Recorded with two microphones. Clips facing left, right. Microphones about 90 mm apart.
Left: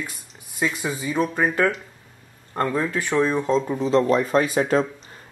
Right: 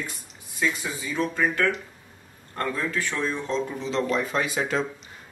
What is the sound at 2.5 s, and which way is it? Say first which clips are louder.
Speech: left 5 dB; 20° left (ahead or behind).